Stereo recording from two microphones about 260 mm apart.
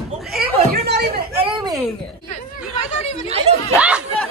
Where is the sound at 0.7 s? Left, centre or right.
Right.